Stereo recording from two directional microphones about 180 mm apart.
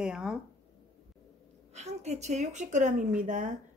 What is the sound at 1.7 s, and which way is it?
A woman's voice, 40° right (ahead or behind).